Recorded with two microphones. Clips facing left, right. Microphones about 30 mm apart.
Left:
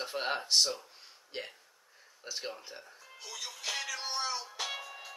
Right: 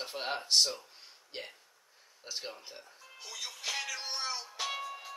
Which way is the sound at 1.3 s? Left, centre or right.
Centre.